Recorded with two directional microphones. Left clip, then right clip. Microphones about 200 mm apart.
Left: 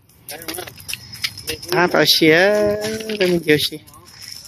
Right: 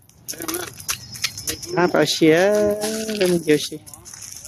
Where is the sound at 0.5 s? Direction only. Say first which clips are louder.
Right 2 dB; 40° right (ahead or behind).